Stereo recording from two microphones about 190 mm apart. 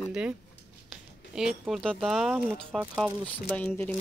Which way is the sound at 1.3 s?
Centre (ahead or behind).